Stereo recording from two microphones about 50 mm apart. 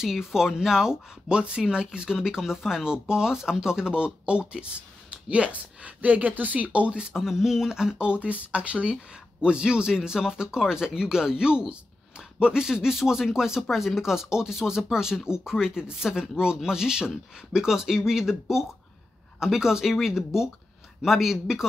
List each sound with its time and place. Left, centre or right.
0.0 s speech: centre
8.1 s speech: right
19.4 s speech: centre